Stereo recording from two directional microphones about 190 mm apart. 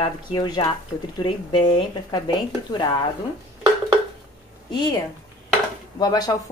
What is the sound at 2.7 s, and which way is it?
Speech, 25° left (ahead or behind).